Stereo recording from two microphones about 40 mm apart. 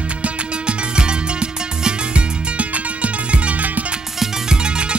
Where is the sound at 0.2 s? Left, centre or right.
Right.